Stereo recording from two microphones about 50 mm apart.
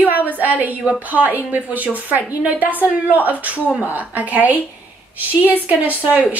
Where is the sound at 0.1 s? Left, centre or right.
Right.